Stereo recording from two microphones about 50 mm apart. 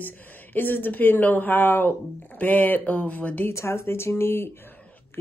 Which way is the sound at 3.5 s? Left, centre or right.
Left.